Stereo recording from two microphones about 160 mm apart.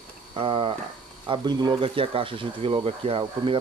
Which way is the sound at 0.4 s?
35° right (ahead or behind).